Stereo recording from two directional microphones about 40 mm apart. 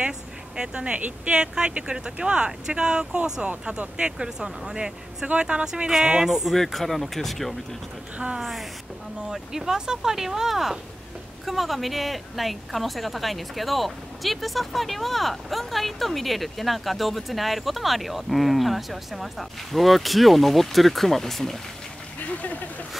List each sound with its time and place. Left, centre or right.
0.6 s speech: right
6.0 s speech: centre
6.5 s a woman's voice: centre
22.2 s speech: left